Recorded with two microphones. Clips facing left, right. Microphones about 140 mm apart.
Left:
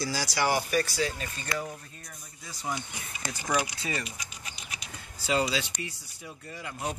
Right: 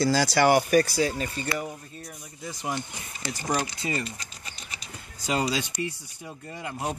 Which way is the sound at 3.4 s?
25° right (ahead or behind).